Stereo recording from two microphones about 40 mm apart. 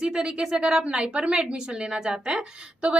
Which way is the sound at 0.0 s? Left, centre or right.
Centre.